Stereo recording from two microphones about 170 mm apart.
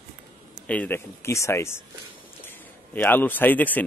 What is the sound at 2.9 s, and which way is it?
Speech, 10° left (ahead or behind).